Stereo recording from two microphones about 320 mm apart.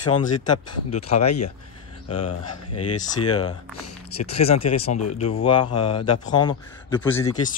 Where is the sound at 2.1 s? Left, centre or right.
Left.